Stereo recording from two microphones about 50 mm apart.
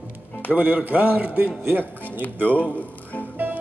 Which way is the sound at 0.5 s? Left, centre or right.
Right.